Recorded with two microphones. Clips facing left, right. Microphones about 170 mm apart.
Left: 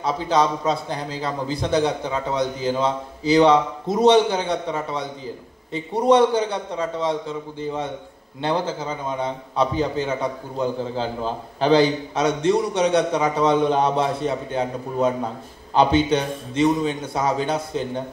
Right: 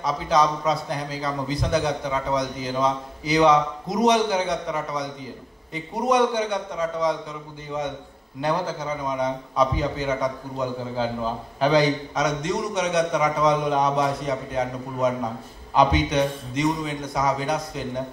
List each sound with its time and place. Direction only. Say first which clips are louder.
0.0 s a man's voice: left 1 dB; 30° left (ahead or behind)